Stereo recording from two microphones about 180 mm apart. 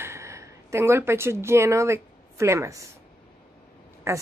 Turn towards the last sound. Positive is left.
turn(degrees=-15)  # may be behind; listen again after turning